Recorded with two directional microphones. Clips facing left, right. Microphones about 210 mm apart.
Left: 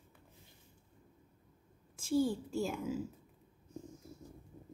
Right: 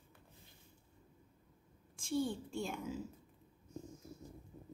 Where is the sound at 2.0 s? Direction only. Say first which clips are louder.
Left 5 dB; 5° left (ahead or behind).